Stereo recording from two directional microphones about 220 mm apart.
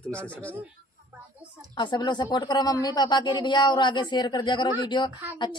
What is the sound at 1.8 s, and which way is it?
Speech, 20° left (ahead or behind).